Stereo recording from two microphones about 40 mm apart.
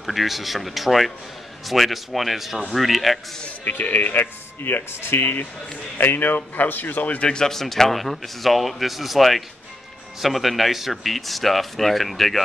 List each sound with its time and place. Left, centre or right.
0.0 s speech: centre
3.6 s speech: left
7.2 s speech: left
7.4 s speech: centre